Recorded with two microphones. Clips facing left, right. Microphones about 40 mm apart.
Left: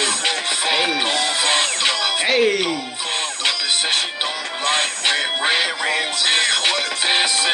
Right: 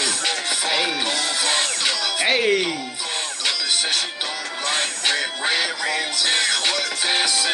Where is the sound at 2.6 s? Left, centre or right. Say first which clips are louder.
Left 2 dB; left.